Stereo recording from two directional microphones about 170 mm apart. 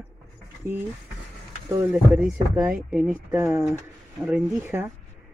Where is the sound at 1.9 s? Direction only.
5° right (ahead or behind).